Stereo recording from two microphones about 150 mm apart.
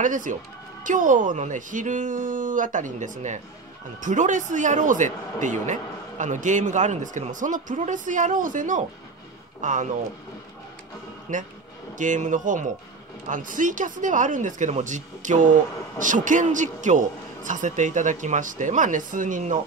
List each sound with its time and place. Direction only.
0.0 s speech: 60° right (ahead or behind)
11.3 s speech: 50° right (ahead or behind)